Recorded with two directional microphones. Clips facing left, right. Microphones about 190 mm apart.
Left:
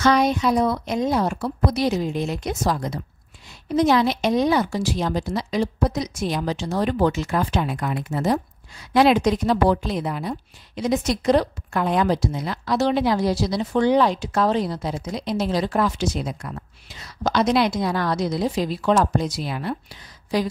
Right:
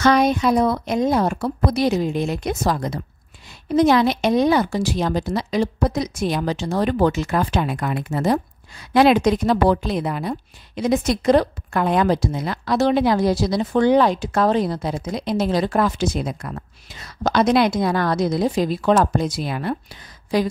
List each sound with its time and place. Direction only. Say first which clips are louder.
0.0 s a woman's voice: right 2 dB; 55° right (ahead or behind)